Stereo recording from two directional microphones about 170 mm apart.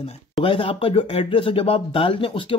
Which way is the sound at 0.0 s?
30° left (ahead or behind).